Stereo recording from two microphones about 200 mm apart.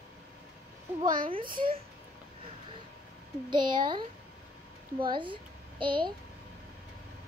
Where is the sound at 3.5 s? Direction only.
25° right (ahead or behind).